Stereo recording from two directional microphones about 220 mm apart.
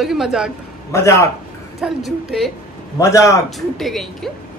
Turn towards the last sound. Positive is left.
turn(degrees=0)  # may be behind; listen again after turning